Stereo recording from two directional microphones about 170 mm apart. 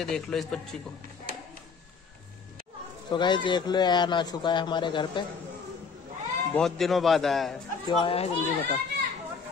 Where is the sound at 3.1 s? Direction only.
25° left (ahead or behind).